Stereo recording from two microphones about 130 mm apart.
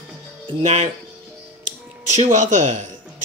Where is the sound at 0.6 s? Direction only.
60° right (ahead or behind).